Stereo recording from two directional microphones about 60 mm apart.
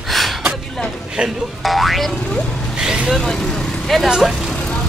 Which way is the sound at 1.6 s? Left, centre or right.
Centre.